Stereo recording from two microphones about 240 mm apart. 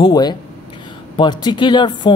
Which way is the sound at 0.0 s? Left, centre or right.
Centre.